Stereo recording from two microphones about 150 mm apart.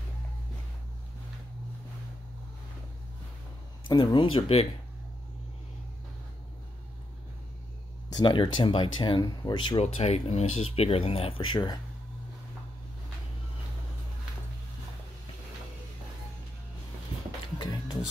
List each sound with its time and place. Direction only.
3.8 s speech: 30° left (ahead or behind)
8.1 s speech: 30° left (ahead or behind)
9.8 s speech: 45° left (ahead or behind)
17.6 s music: 25° left (ahead or behind)